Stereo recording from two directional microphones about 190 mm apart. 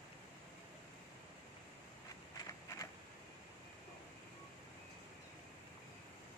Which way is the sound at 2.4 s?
20° left (ahead or behind).